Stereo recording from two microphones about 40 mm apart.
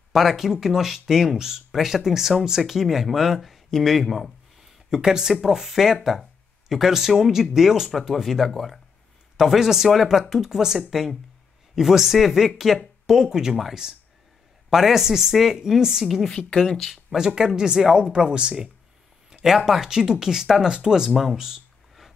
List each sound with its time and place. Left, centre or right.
0.1 s speech: centre
4.9 s speech: centre
16.3 s speech: centre
16.9 s speech: centre
17.6 s speech: centre
19.4 s speech: centre